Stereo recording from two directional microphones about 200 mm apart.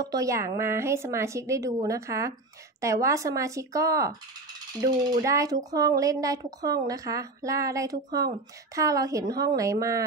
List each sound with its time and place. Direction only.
0.0 s speech: 15° right (ahead or behind)